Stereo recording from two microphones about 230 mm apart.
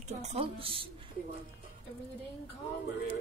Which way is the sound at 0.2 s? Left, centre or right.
Right.